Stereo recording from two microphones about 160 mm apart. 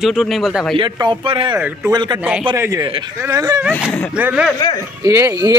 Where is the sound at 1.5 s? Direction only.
10° right (ahead or behind).